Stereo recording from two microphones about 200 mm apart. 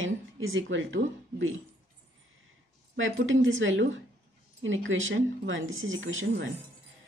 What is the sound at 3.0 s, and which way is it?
Speech, 75° right (ahead or behind).